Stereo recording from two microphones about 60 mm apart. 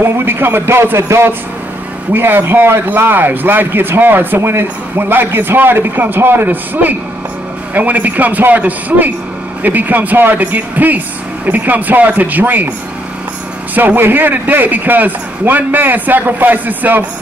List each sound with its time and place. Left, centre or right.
0.0 s a man's voice: right
4.4 s a man's voice: right
13.7 s a man's voice: right